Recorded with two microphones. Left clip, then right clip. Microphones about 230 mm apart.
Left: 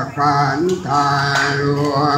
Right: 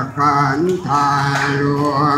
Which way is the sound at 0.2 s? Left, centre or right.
Right.